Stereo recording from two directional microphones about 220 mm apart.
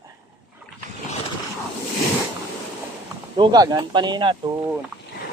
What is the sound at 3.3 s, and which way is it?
A man's voice, 20° right (ahead or behind).